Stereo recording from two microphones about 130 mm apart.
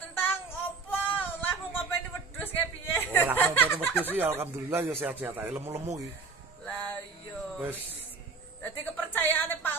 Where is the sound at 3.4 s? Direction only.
15° left (ahead or behind).